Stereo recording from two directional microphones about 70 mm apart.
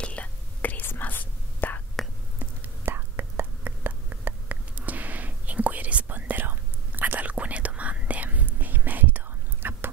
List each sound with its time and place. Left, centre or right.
0.0 s whispering: centre
2.0 s whispering: centre
2.3 s whispering: right